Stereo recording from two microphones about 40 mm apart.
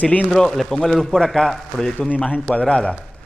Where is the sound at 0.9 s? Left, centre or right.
Centre.